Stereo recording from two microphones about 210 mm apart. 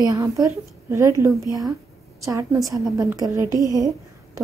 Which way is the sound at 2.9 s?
15° right (ahead or behind).